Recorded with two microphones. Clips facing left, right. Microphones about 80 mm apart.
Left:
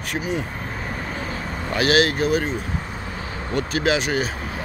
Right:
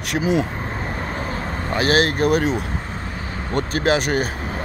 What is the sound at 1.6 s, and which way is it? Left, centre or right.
Speech, right.